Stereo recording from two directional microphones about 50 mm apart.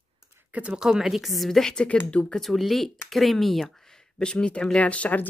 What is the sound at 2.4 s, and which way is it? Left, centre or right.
Speech, centre.